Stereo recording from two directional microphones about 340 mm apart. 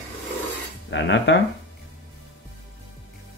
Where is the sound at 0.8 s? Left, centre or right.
Left.